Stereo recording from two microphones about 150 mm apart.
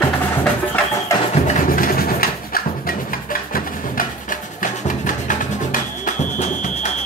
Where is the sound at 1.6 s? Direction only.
70° left (ahead or behind).